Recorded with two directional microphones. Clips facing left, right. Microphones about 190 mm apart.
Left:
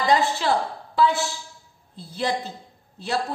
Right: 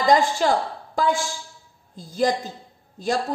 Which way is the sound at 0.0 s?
45° right (ahead or behind).